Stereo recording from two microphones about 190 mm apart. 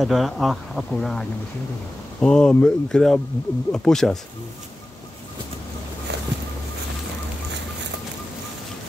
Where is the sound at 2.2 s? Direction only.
5° left (ahead or behind).